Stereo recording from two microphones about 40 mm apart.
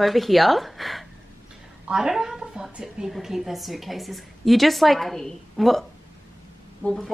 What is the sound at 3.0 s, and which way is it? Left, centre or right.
A woman's voice, centre.